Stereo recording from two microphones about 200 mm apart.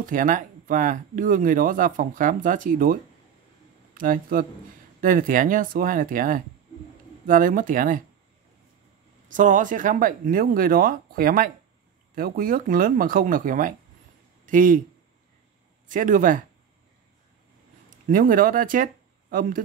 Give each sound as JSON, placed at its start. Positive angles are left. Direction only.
{"t": 0.0, "sound": "a man's voice", "side_deg": -40}
{"t": 9.3, "sound": "speech", "side_deg": -40}
{"t": 15.9, "sound": "speech", "side_deg": -40}
{"t": 17.8, "sound": "speech", "side_deg": -45}